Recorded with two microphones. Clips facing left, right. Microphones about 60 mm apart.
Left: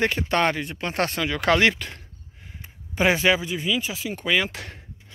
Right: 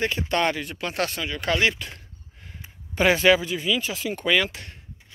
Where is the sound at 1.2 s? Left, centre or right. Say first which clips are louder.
Left 5 dB; left.